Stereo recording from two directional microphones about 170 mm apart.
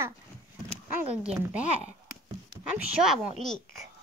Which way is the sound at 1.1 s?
5° right (ahead or behind).